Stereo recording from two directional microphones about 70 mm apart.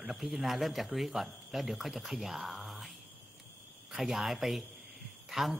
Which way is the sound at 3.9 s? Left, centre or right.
Centre.